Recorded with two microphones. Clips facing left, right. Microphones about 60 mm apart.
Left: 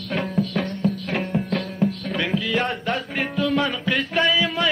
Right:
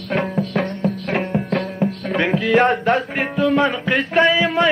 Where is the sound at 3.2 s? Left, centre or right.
Right.